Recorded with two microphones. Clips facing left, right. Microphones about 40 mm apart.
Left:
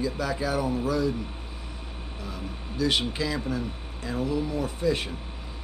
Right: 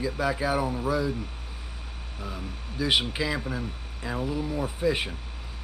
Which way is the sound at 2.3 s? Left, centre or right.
Centre.